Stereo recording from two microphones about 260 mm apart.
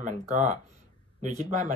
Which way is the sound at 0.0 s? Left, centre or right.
Right.